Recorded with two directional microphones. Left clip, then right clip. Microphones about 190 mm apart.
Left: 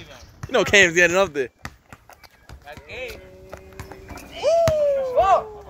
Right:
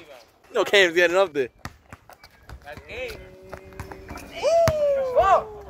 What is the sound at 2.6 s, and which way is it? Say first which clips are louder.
Run: even; 40° right (ahead or behind).